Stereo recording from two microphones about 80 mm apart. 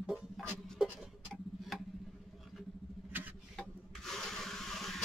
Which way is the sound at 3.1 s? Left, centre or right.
Right.